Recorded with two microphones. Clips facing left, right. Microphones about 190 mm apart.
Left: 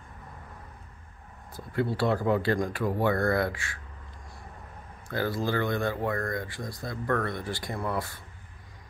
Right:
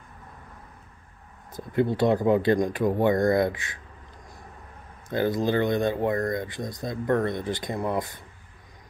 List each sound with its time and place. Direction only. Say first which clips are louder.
1.5 s speech: right 5 dB; 20° right (ahead or behind)
5.0 s speech: right 5 dB; 20° right (ahead or behind)